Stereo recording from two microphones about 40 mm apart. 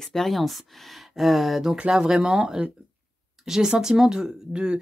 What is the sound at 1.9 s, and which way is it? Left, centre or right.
Speech, centre.